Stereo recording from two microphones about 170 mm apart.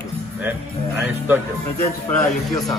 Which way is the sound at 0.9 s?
10° right (ahead or behind).